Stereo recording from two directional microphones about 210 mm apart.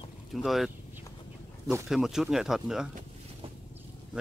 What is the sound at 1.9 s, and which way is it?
Speech, centre (ahead or behind).